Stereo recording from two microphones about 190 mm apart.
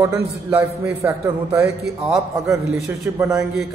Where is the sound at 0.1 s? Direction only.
10° right (ahead or behind).